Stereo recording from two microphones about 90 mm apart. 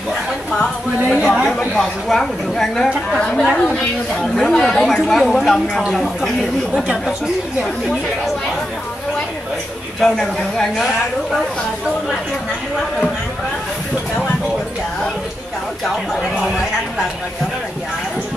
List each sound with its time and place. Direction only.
0.5 s speech: 10° left (ahead or behind)
6.7 s speech: 10° right (ahead or behind)
9.9 s speech: 5° left (ahead or behind)
15.8 s speech: 5° right (ahead or behind)